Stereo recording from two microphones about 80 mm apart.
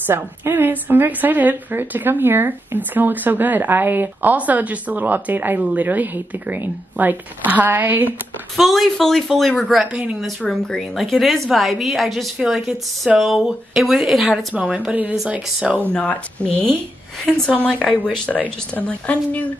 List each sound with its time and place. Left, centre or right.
0.0 s a woman's voice: right
8.5 s a woman's voice: centre
14.5 s speech: centre
15.9 s a woman's voice: centre